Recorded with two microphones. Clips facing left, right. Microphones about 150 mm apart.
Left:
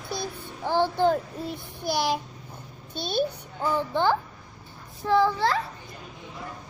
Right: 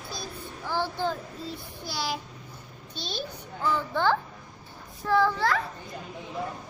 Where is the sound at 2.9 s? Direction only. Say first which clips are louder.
Left 9 dB; 55° left (ahead or behind).